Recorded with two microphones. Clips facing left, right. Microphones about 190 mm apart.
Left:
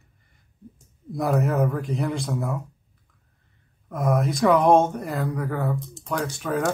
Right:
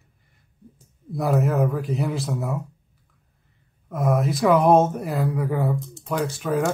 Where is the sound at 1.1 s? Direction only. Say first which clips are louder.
Right 1 dB; centre (ahead or behind).